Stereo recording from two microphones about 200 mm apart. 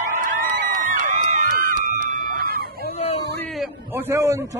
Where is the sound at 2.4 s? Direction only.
50° right (ahead or behind).